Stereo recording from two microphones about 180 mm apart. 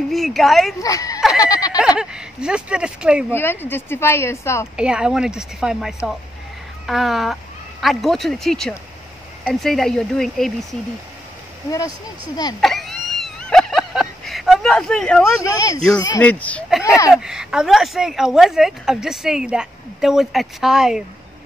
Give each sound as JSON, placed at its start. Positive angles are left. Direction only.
{"t": 0.1, "sound": "speech", "side_deg": 0}
{"t": 0.8, "sound": "speech", "side_deg": 20}
{"t": 1.4, "sound": "a sound", "side_deg": 20}
{"t": 1.8, "sound": "speech", "side_deg": -5}
{"t": 3.3, "sound": "speech", "side_deg": 10}
{"t": 4.7, "sound": "speech", "side_deg": -5}
{"t": 12.5, "sound": "a sound", "side_deg": 0}
{"t": 15.4, "sound": "speech", "side_deg": 20}
{"t": 17.1, "sound": "speech", "side_deg": -5}